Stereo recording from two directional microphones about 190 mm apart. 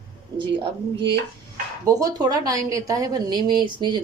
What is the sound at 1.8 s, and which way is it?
A woman's voice, 20° right (ahead or behind).